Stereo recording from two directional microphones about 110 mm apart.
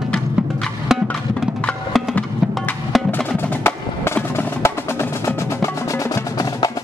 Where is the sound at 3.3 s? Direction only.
20° left (ahead or behind).